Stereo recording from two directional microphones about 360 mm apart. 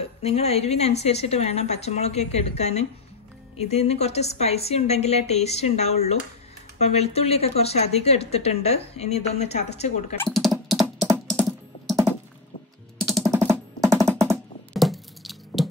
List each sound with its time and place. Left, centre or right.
0.0 s speech: centre
10.3 s computer keyboard: centre
13.0 s typing: centre
14.7 s a sound: centre